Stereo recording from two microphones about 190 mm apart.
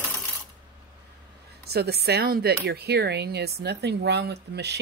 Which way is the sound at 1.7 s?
60° right (ahead or behind).